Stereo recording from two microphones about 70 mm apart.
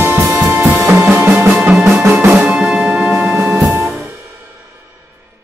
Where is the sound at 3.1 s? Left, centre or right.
Right.